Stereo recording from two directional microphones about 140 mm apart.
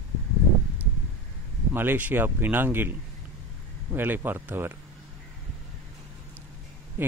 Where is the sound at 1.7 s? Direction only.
15° right (ahead or behind).